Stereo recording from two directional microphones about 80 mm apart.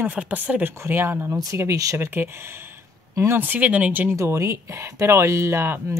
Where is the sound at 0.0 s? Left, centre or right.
Centre.